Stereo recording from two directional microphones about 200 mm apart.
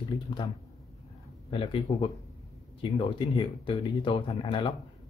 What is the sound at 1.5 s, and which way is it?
Speech, 30° left (ahead or behind).